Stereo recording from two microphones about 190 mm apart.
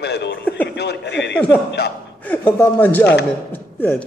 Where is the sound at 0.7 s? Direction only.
60° left (ahead or behind).